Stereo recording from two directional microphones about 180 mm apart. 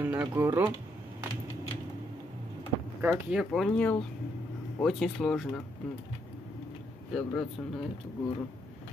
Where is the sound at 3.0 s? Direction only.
5° right (ahead or behind).